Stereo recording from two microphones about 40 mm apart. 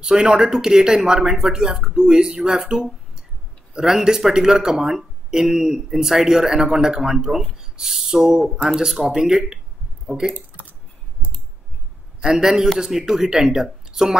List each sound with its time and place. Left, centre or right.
0.0 s speech: centre
12.2 s a man's voice: centre